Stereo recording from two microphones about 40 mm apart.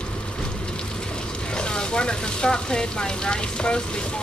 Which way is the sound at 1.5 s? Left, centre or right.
Left.